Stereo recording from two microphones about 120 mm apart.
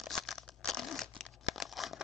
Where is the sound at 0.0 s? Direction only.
Centre (ahead or behind).